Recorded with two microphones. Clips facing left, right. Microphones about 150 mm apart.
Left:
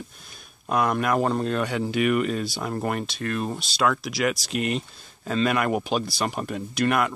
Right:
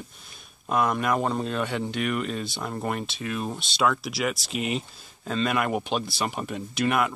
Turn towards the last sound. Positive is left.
turn(degrees=0)  # may be behind; listen again after turning